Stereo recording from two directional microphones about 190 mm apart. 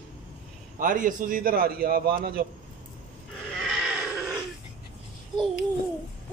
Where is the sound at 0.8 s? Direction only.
45° right (ahead or behind).